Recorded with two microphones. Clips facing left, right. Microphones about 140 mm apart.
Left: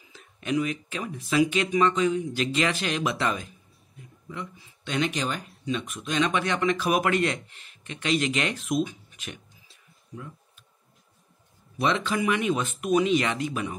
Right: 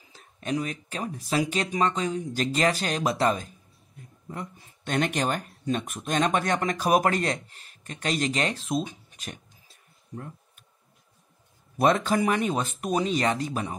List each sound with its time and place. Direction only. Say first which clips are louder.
0.1 s speech: left 2 dB; 35° right (ahead or behind)
11.8 s speech: right 3 dB; 40° right (ahead or behind)